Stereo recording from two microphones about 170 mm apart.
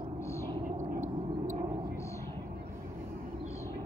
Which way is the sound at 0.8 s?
50° right (ahead or behind).